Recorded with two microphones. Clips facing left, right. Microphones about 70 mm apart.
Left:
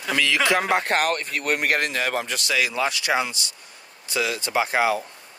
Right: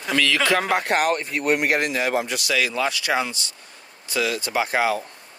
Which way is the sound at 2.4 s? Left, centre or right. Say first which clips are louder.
Right 1 dB; left.